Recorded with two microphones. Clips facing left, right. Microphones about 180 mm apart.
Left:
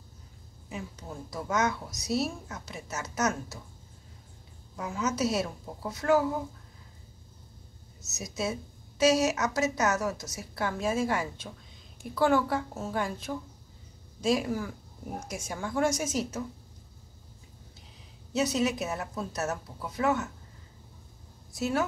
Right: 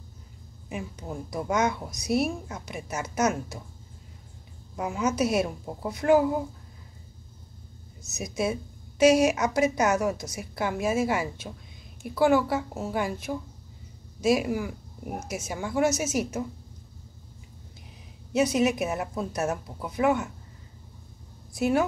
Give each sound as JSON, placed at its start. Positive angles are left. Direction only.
{"t": 0.7, "sound": "a woman's voice", "side_deg": -15}
{"t": 4.7, "sound": "a woman's voice", "side_deg": -15}
{"t": 8.1, "sound": "a woman's voice", "side_deg": -15}
{"t": 18.3, "sound": "a woman's voice", "side_deg": -15}
{"t": 21.5, "sound": "a woman's voice", "side_deg": -15}